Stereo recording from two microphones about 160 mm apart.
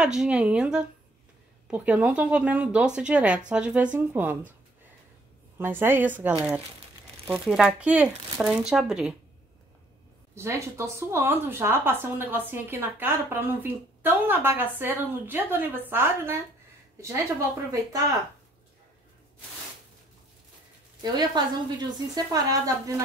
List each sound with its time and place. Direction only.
0.0 s speech: 5° right (ahead or behind)
5.6 s speech: 15° right (ahead or behind)
10.3 s speech: 15° right (ahead or behind)
21.4 s a woman's voice: 25° right (ahead or behind)